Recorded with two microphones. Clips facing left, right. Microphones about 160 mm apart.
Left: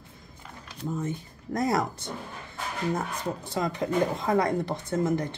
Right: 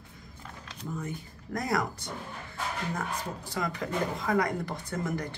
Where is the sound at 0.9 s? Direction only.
25° left (ahead or behind).